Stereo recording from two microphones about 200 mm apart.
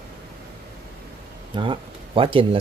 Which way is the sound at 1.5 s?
25° right (ahead or behind).